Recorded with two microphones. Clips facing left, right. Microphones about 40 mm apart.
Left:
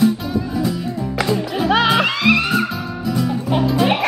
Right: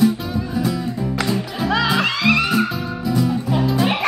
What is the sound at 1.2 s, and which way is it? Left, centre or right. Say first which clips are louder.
Music: left 5 dB; centre.